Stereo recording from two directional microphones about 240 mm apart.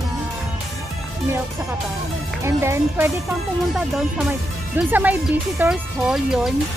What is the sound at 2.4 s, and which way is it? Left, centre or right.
Speech, centre.